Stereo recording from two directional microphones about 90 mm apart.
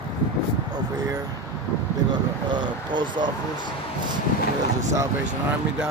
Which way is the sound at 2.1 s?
55° right (ahead or behind).